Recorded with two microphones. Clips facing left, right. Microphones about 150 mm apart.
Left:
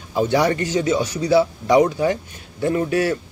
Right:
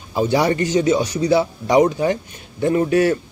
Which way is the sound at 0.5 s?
25° right (ahead or behind).